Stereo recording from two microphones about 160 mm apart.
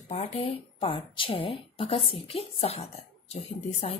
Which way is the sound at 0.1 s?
40° left (ahead or behind).